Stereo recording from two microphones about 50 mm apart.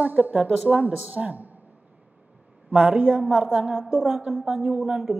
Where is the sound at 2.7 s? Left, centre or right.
Right.